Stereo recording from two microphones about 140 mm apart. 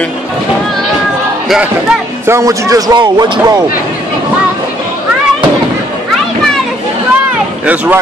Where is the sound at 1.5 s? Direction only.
5° right (ahead or behind).